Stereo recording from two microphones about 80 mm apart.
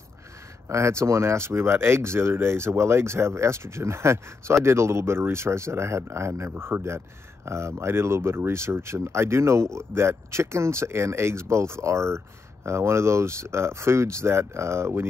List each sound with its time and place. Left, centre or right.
0.7 s speech: right